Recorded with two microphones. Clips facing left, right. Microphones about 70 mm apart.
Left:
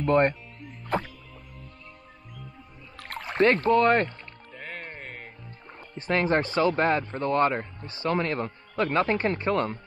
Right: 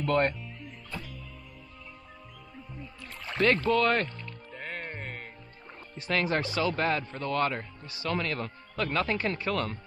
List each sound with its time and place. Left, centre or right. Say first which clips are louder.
0.0 s speech: left 5 dB; left
3.0 s a sound: left 5 dB; left
3.3 s speech: left 4 dB; left
4.6 s music: right 1 dB; centre
5.9 s speech: left 4 dB; left